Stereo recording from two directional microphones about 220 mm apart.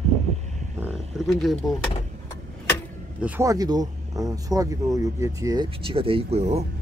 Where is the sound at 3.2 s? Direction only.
10° right (ahead or behind); by 6.7 s 30° right (ahead or behind).